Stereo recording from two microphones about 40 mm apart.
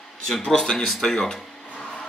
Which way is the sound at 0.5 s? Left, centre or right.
Centre.